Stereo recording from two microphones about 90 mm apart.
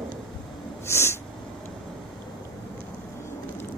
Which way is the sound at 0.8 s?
30° left (ahead or behind).